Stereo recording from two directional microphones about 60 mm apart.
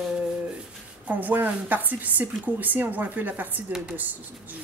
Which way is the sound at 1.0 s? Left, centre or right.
Right.